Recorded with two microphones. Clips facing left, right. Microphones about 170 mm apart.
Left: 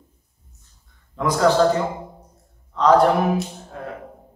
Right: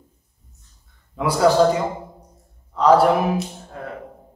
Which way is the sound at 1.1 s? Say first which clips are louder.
Right 1 dB; 10° right (ahead or behind).